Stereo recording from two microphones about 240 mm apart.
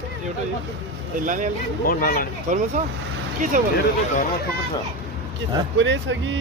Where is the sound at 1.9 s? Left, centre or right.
Left.